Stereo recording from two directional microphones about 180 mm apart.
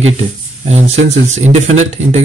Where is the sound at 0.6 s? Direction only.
40° right (ahead or behind).